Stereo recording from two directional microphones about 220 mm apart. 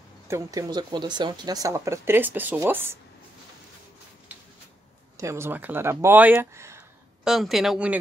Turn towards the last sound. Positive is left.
turn(degrees=-5)  # may be behind; listen again after turning